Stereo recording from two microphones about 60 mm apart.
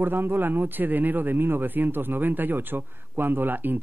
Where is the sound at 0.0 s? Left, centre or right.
Right.